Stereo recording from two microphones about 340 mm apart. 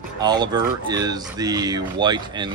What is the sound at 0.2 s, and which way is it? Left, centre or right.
Speech, centre.